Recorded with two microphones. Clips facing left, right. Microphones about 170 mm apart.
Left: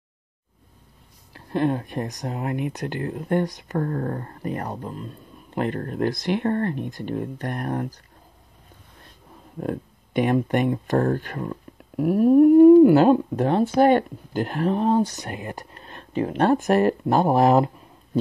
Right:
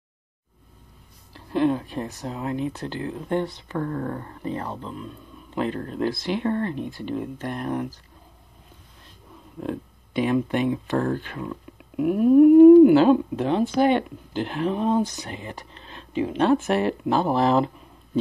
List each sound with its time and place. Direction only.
1.3 s speech: 50° left (ahead or behind)
9.6 s speech: 50° left (ahead or behind)
12.4 s a sound: 5° right (ahead or behind)
13.4 s speech: 40° left (ahead or behind)
15.2 s speech: 50° left (ahead or behind)